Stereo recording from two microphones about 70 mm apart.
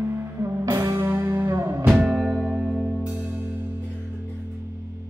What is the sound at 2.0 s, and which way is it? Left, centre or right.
Music, centre.